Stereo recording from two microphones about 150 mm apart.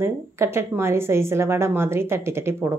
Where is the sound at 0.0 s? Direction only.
15° right (ahead or behind).